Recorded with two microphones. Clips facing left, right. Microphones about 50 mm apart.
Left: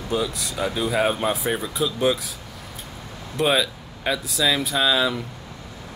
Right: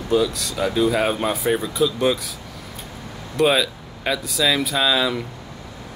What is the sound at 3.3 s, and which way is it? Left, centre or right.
Speech, centre.